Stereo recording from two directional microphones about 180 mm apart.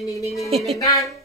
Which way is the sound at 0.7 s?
20° left (ahead or behind).